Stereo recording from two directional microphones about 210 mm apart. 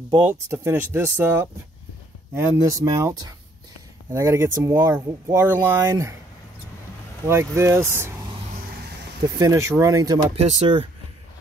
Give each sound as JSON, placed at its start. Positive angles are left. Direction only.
{"t": 0.2, "sound": "speech", "side_deg": -10}
{"t": 7.2, "sound": "speech", "side_deg": -10}
{"t": 9.4, "sound": "speech", "side_deg": -15}
{"t": 10.3, "sound": "speech", "side_deg": -30}